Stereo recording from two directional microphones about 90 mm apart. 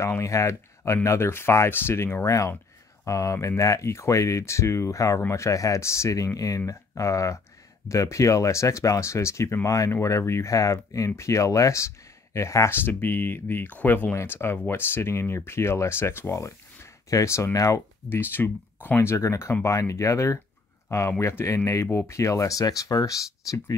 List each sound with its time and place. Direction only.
0.0 s speech: 35° left (ahead or behind)
2.2 s speech: 35° left (ahead or behind)